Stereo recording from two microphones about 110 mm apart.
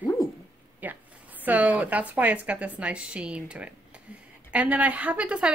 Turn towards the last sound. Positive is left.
turn(degrees=-10)  # may be behind; listen again after turning